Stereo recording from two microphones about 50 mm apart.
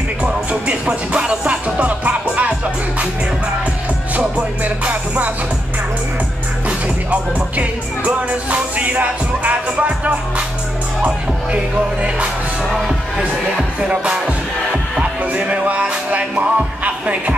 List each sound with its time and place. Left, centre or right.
0.5 s music: right
4.2 s music: right
7.1 s music: right
13.7 s music: right